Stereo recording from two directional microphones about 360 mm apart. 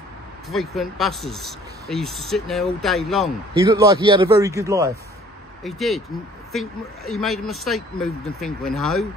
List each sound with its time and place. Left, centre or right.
0.5 s speech: centre
3.7 s a man's voice: centre